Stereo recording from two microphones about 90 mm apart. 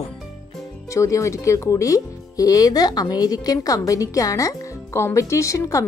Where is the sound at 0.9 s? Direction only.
35° left (ahead or behind).